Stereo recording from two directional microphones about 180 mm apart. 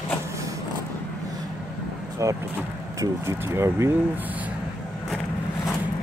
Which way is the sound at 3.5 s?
15° right (ahead or behind).